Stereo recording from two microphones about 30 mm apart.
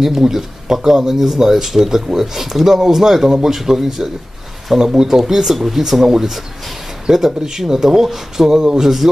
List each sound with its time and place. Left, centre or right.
0.0 s speech: centre
4.7 s speech: right
5.1 s speech: centre
8.5 s speech: right
8.8 s speech: centre